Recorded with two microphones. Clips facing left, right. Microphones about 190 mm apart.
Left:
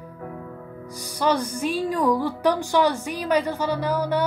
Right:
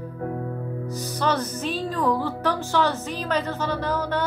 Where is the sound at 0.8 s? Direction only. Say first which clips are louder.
Left 2 dB; 15° left (ahead or behind).